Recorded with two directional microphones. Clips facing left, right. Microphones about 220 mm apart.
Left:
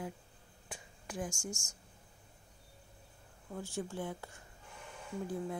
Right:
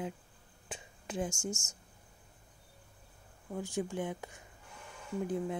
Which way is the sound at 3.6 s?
15° right (ahead or behind).